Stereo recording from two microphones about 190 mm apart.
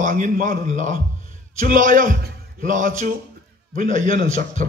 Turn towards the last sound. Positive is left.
turn(degrees=-40)  # may be behind; listen again after turning